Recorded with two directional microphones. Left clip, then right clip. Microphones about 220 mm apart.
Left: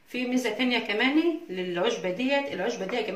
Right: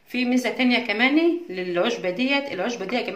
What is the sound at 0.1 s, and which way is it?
Speech, 50° right (ahead or behind).